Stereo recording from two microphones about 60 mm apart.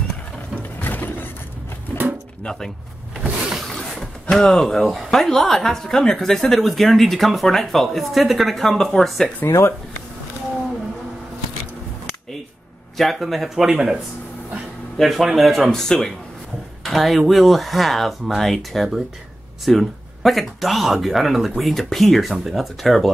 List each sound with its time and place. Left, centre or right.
0.6 s mechanisms: left
3.7 s a sound: centre
4.8 s speech: centre
9.5 s speech: left
12.9 s speech: centre
13.7 s speech: centre
15.0 s speech: centre
15.7 s speech: centre